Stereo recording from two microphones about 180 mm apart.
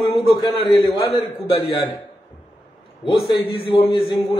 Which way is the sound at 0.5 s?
Centre (ahead or behind).